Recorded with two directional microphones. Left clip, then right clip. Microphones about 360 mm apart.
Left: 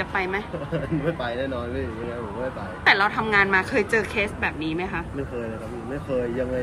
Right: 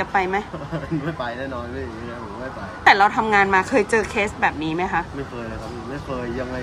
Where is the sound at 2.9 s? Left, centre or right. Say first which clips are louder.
Right 5 dB; centre.